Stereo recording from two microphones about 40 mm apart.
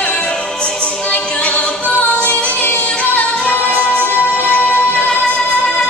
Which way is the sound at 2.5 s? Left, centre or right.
Left.